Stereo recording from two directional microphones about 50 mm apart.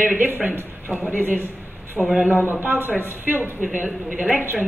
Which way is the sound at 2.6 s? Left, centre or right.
Right.